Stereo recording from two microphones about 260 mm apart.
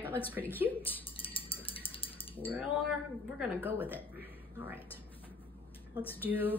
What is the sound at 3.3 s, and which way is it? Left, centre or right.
A woman's voice, centre.